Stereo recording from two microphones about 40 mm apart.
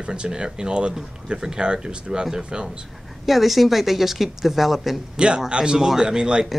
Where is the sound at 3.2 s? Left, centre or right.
Centre.